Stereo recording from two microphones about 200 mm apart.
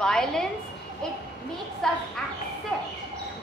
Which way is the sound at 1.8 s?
5° left (ahead or behind).